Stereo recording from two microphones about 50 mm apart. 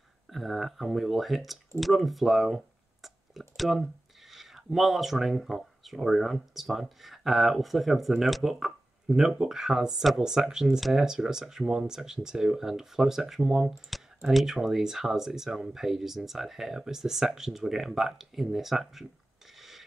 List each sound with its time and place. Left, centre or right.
0.3 s speech: centre
1.8 s a sound: centre
4.7 s speech: centre